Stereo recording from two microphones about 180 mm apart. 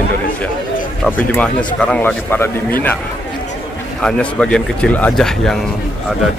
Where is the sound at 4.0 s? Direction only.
5° left (ahead or behind).